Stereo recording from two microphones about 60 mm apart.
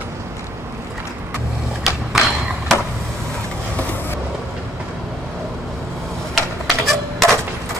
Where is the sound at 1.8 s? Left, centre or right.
Centre.